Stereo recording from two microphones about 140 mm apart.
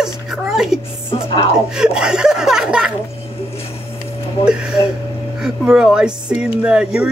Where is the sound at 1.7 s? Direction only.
5° right (ahead or behind).